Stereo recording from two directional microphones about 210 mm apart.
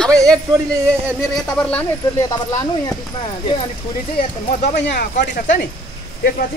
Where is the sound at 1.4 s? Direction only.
5° left (ahead or behind).